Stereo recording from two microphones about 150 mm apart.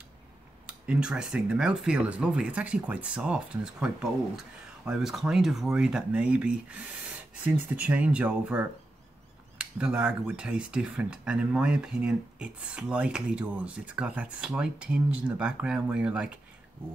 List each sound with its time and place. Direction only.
0.7 s speech: 5° right (ahead or behind)